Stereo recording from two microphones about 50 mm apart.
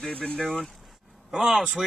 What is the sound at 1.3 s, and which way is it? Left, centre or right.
Speech, centre.